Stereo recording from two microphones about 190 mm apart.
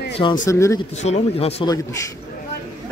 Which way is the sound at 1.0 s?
35° left (ahead or behind).